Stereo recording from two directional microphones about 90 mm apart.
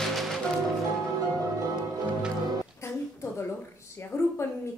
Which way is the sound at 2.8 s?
30° left (ahead or behind).